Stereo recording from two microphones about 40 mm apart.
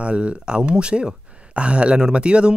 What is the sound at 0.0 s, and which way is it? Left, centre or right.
Speech, right.